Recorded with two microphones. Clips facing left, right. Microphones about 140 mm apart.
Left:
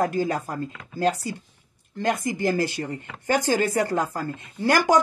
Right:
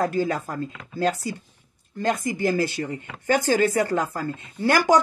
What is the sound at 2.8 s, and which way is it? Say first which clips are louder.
Speech: right 1 dB; 25° left (ahead or behind).